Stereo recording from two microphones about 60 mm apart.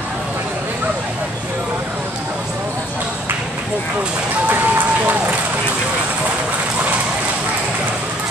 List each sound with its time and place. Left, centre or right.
4.5 s run: right